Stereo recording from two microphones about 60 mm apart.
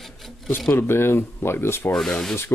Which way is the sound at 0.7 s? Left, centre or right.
Left.